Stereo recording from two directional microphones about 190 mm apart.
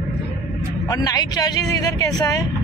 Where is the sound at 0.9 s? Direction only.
20° left (ahead or behind).